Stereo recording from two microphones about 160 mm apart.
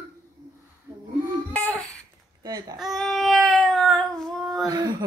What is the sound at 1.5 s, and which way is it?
Babbling, 10° left (ahead or behind).